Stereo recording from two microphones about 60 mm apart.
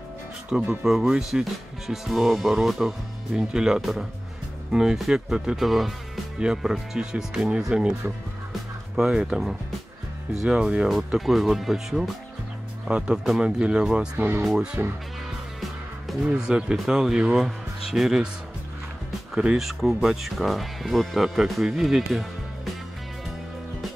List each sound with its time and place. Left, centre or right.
0.5 s speech: centre
10.4 s speech: centre
11.1 s speech: centre
14.1 s speech: right
16.3 s speech: centre
19.3 s speech: centre